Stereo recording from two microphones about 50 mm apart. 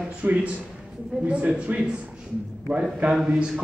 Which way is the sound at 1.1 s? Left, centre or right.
Right.